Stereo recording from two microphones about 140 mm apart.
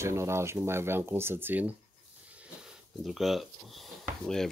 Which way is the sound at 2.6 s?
Centre (ahead or behind).